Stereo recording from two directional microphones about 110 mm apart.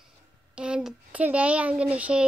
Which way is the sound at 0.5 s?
10° right (ahead or behind).